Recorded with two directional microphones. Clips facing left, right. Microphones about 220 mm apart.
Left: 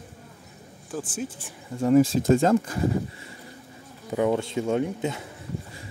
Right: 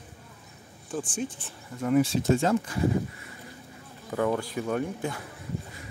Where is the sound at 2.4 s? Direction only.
45° left (ahead or behind).